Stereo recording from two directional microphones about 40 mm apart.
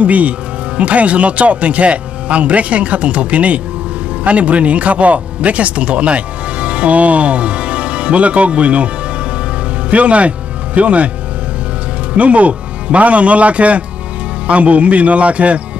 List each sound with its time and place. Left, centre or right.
0.0 s a man's voice: right
12.2 s speech: right